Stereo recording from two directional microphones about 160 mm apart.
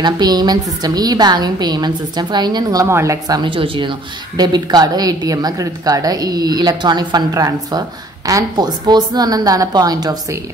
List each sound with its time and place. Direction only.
0.0 s a woman's voice: 25° right (ahead or behind)